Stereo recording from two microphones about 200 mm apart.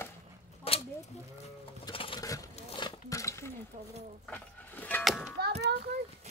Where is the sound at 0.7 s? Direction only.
30° left (ahead or behind).